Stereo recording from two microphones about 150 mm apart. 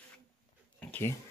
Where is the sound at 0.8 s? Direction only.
15° left (ahead or behind).